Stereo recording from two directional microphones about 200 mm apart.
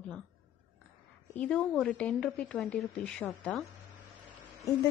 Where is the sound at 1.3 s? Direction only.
5° left (ahead or behind).